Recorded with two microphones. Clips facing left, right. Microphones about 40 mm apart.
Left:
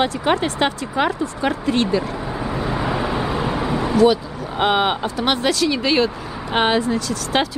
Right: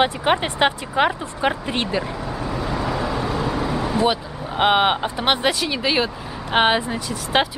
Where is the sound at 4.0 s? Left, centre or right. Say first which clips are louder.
Left 8 dB; centre.